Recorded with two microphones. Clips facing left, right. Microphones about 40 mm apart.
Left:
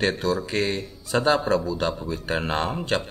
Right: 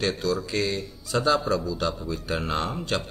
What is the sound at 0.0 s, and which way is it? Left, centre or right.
Speech, left.